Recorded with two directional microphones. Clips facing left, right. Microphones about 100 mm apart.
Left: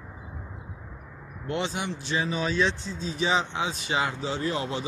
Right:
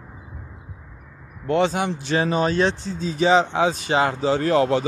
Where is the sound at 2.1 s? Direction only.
60° right (ahead or behind); by 4.2 s 45° right (ahead or behind).